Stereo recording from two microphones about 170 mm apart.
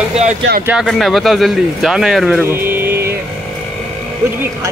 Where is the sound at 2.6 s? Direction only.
15° right (ahead or behind).